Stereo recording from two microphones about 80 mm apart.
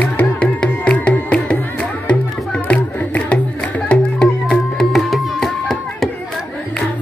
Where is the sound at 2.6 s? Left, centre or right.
Centre.